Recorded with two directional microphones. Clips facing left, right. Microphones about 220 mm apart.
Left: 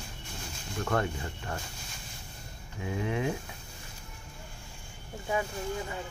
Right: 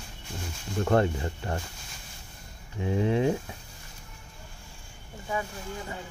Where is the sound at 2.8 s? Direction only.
30° right (ahead or behind).